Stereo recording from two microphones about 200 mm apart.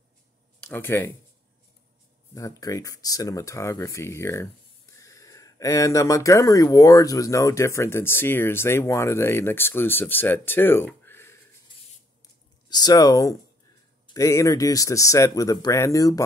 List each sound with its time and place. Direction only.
0.6 s speech: 10° left (ahead or behind)
2.3 s speech: 15° left (ahead or behind)
10.9 s a sound: 10° left (ahead or behind)
12.6 s speech: 20° left (ahead or behind)